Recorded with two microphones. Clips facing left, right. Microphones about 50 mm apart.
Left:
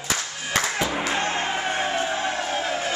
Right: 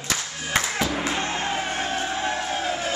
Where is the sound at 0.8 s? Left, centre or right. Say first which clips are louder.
Left 1 dB; centre.